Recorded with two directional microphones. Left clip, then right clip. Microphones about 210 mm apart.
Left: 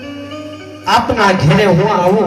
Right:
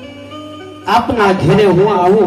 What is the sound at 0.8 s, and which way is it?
A woman's voice, 50° right (ahead or behind).